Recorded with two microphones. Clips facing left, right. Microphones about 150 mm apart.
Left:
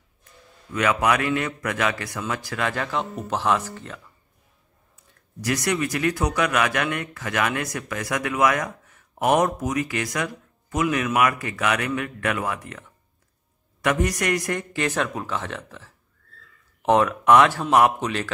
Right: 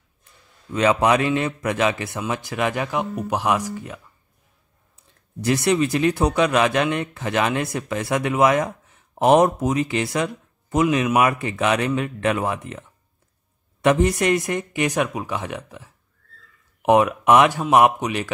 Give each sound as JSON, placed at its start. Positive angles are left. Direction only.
{"t": 0.7, "sound": "speech", "side_deg": -25}
{"t": 5.4, "sound": "speech", "side_deg": -25}